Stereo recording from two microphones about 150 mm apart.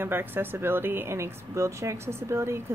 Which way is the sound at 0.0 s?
15° right (ahead or behind).